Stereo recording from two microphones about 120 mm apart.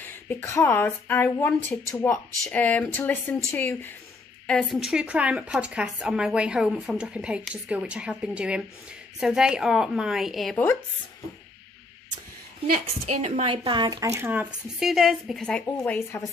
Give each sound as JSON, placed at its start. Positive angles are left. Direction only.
{"t": 0.0, "sound": "speech", "side_deg": 15}
{"t": 4.5, "sound": "a woman's voice", "side_deg": 5}
{"t": 10.5, "sound": "speech", "side_deg": 20}
{"t": 12.7, "sound": "a woman's voice", "side_deg": -65}
{"t": 13.5, "sound": "speech", "side_deg": -45}
{"t": 13.9, "sound": "speech", "side_deg": -25}
{"t": 14.8, "sound": "a woman's voice", "side_deg": 0}